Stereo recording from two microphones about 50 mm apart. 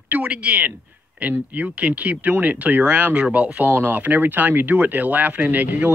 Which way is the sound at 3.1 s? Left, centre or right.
Right.